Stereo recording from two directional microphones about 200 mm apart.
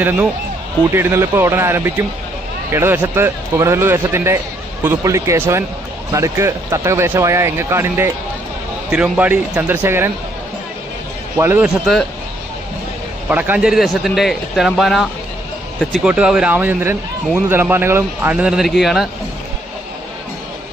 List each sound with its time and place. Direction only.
0.9 s speech: 10° right (ahead or behind)
11.3 s speech: 10° right (ahead or behind)
13.3 s speech: 5° right (ahead or behind)